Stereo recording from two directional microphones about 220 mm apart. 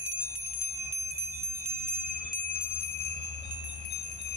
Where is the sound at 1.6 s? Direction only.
35° left (ahead or behind).